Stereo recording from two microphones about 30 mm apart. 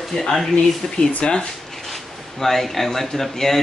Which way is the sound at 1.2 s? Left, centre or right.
Left.